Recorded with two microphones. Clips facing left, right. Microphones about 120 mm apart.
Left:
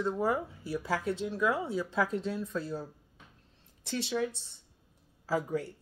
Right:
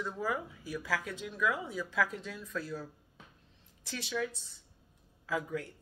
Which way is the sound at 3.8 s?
30° left (ahead or behind).